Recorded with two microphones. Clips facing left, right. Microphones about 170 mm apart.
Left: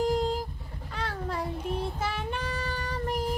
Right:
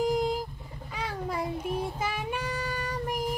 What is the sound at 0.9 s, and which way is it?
Child singing, 10° right (ahead or behind).